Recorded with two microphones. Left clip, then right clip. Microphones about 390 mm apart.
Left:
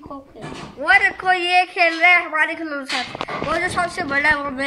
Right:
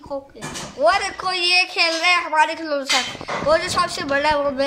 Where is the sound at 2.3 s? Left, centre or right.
Centre.